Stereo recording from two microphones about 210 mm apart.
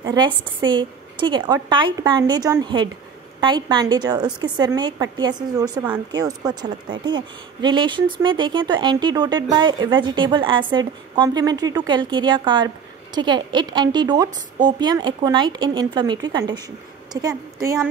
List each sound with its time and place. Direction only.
0.7 s a woman's voice: 20° right (ahead or behind)